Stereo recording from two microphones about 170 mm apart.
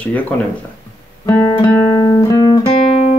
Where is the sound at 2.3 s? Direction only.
25° left (ahead or behind).